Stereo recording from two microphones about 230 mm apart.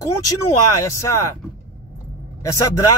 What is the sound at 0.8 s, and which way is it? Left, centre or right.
Speech, centre.